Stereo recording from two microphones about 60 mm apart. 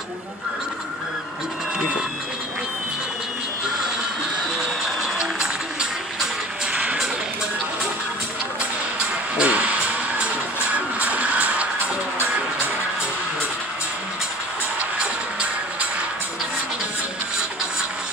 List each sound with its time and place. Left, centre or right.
5.2 s a sound: centre
6.7 s music: centre
9.4 s music: centre